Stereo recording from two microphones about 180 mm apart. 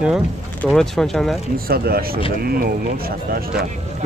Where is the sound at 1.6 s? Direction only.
60° right (ahead or behind).